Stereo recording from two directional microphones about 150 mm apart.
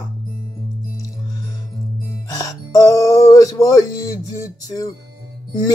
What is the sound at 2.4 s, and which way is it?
Speech, 20° left (ahead or behind).